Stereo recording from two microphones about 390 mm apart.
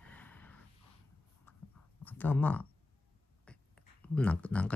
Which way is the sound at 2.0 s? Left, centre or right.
Centre.